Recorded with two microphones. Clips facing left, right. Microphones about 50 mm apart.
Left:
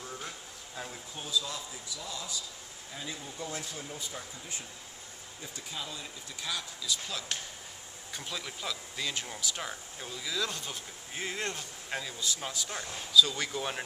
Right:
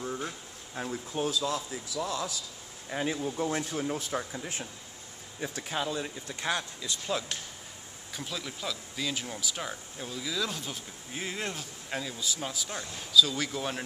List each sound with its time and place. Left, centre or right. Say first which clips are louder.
0.0 s a sound: right 7 dB; centre
0.8 s speech: right 5 dB; right
1.1 s a man's voice: right 5 dB; right
2.9 s speech: right 11 dB; right
4.0 s speech: right 8 dB; right
6.8 s speech: right 4 dB; right
8.1 s speech: right 2 dB; centre